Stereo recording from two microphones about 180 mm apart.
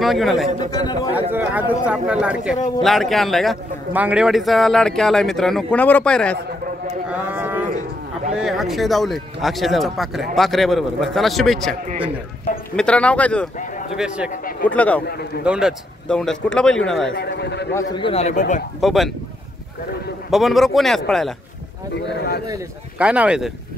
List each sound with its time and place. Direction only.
0.0 s speech: centre (ahead or behind)
0.7 s speech: 20° left (ahead or behind)
1.3 s speech: 10° right (ahead or behind); by 6.3 s 5° left (ahead or behind)
7.1 s a sound: 10° right (ahead or behind)
8.4 s speech: centre (ahead or behind)
12.7 s speech: 5° left (ahead or behind)
13.9 s speech: 5° right (ahead or behind)
14.7 s speech: 10° left (ahead or behind)
15.4 s speech: 5° right (ahead or behind)
17.1 s speech: 65° left (ahead or behind)
17.7 s a man's voice: 25° left (ahead or behind)
18.8 s speech: centre (ahead or behind)
20.2 s speech: centre (ahead or behind)
22.9 s speech: 5° right (ahead or behind)